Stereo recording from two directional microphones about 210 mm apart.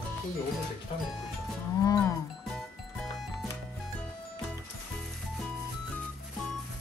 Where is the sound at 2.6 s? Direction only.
Centre (ahead or behind).